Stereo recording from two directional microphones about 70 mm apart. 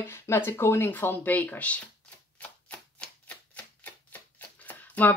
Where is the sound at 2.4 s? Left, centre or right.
Centre.